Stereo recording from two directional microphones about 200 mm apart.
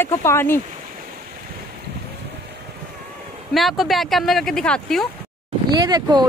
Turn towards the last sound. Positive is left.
turn(degrees=-20)  # may be behind; listen again after turning